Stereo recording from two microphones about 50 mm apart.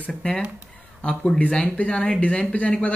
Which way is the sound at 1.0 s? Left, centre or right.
Left.